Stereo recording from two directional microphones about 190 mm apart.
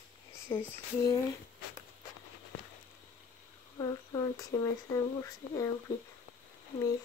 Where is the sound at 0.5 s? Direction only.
15° left (ahead or behind).